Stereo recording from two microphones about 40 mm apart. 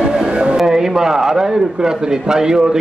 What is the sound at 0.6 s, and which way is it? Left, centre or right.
A man's voice, centre.